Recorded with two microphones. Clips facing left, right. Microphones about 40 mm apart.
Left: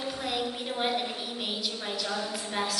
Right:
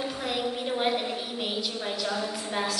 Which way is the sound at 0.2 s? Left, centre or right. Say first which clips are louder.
Right 3 dB; centre.